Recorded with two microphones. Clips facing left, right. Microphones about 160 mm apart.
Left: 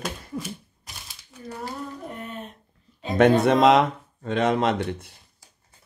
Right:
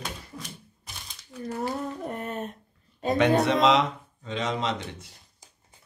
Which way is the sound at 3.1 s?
50° left (ahead or behind).